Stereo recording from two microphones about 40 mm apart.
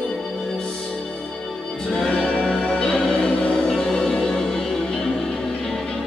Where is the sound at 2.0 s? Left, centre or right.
Centre.